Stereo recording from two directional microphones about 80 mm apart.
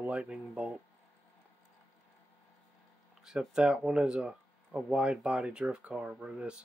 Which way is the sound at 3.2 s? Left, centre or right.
Centre.